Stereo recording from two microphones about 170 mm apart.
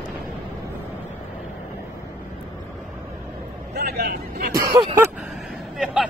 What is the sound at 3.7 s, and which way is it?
Vehicle, 75° right (ahead or behind).